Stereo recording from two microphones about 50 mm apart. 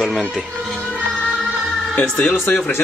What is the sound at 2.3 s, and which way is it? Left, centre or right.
Speech, left.